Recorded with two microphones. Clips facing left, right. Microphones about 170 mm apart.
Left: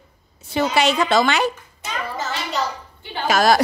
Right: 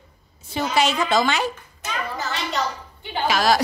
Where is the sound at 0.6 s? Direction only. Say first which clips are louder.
Left 3 dB; 70° left (ahead or behind).